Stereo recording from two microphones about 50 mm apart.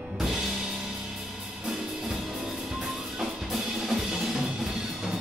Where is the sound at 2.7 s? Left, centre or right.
Centre.